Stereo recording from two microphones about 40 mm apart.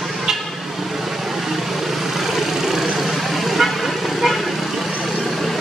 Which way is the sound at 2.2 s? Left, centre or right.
Centre.